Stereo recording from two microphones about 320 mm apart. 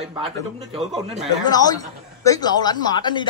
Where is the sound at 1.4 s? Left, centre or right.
Centre.